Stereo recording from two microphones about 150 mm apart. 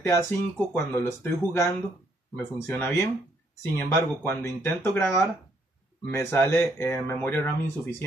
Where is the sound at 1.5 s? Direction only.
15° left (ahead or behind).